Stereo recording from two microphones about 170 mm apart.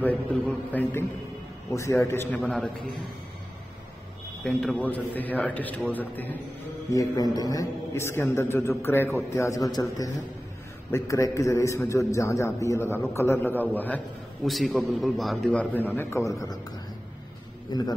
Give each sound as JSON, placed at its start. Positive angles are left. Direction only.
{"t": 0.0, "sound": "a man's voice", "side_deg": 10}
{"t": 2.3, "sound": "a man's voice", "side_deg": 5}
{"t": 4.4, "sound": "a man's voice", "side_deg": 0}
{"t": 6.9, "sound": "a man's voice", "side_deg": 20}